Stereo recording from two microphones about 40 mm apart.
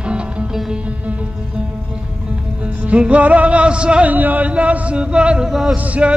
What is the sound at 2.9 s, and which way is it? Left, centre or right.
Music, right.